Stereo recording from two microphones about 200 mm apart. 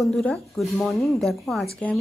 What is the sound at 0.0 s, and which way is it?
A woman's voice, 5° left (ahead or behind).